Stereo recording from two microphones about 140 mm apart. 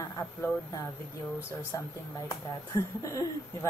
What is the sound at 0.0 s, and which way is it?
Speech, 15° left (ahead or behind).